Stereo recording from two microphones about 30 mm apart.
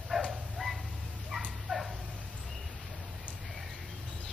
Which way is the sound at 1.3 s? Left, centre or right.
Centre.